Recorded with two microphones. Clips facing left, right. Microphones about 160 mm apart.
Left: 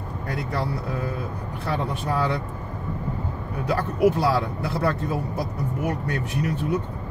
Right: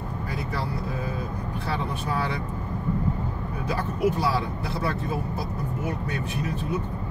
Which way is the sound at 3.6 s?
70° left (ahead or behind).